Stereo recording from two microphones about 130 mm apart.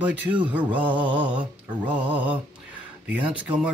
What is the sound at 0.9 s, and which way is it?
Mantra, 40° right (ahead or behind).